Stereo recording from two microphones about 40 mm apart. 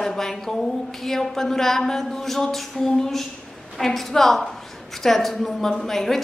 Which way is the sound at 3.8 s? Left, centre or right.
Centre.